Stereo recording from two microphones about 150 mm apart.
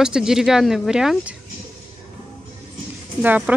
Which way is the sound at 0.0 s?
5° right (ahead or behind).